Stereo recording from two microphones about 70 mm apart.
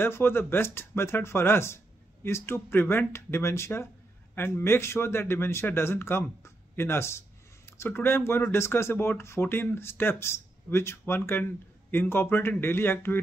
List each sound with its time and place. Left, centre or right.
0.0 s speech: left